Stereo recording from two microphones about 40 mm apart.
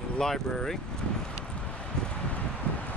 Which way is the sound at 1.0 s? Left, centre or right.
Left.